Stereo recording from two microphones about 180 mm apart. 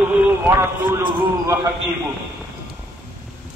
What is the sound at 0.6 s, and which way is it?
Speech, 15° right (ahead or behind).